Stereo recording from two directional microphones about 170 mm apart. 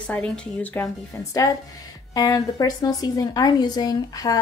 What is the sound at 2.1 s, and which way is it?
A woman's voice, 20° left (ahead or behind).